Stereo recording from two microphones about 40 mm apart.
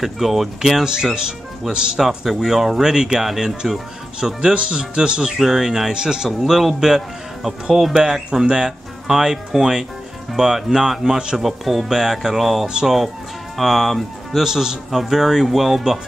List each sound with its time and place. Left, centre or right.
0.0 s speech: centre
2.0 s speech: centre
4.6 s speech: right
11.4 s speech: centre
14.4 s speech: centre